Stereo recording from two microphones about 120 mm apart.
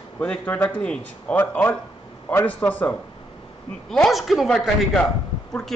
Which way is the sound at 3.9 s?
Centre (ahead or behind).